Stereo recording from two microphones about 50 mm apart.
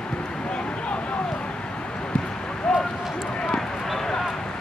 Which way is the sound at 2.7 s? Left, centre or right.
Centre.